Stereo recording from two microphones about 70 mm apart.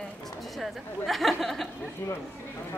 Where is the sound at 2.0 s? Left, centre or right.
Left.